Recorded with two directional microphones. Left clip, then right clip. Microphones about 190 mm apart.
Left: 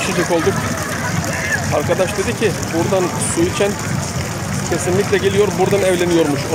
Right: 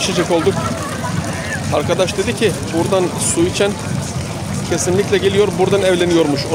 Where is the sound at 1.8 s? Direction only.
20° right (ahead or behind).